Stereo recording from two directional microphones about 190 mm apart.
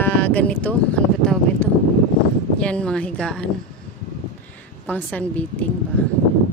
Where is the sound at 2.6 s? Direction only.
5° left (ahead or behind).